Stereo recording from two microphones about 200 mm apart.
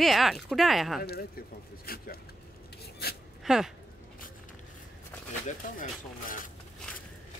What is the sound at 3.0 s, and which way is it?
Filing, 50° left (ahead or behind).